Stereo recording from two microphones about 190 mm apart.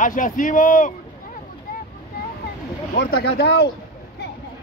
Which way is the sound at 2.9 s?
65° left (ahead or behind).